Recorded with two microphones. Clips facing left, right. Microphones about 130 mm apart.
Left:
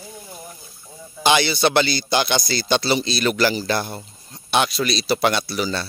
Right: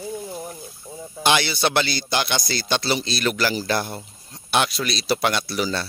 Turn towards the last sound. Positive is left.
turn(degrees=0)  # may be behind; listen again after turning